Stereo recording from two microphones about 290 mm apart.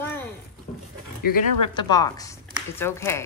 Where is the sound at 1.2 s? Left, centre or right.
Left.